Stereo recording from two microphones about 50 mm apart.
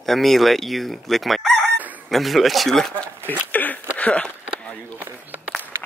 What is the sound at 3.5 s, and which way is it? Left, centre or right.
Speech, left.